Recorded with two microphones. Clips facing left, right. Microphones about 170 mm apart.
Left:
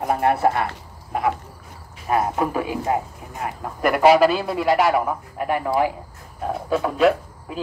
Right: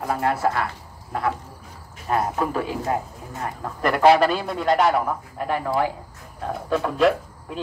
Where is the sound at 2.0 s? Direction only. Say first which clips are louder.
Left 2 dB; 10° left (ahead or behind).